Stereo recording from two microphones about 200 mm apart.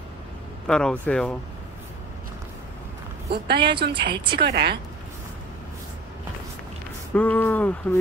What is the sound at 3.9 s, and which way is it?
Speech, 25° right (ahead or behind).